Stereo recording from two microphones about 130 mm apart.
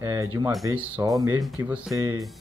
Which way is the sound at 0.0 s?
25° right (ahead or behind).